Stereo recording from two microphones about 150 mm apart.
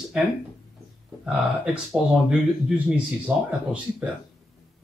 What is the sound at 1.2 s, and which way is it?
Speech, 5° right (ahead or behind).